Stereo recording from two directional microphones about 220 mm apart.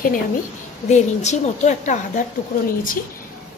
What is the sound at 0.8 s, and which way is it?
A woman's voice, 30° left (ahead or behind).